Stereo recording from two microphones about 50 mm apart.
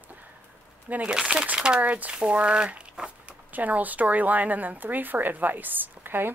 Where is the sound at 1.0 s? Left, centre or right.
Centre.